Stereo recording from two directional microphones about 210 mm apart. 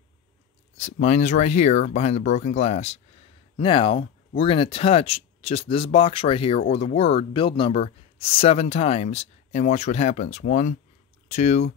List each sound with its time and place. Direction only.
0.7 s speech: 35° left (ahead or behind)